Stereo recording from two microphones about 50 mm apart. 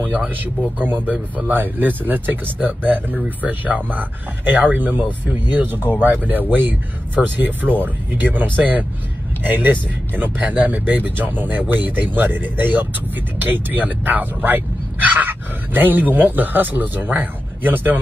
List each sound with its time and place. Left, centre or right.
0.0 s speech: right